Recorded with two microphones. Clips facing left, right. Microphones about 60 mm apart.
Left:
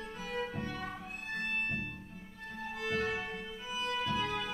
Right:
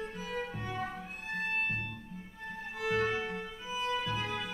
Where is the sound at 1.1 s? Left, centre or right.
Centre.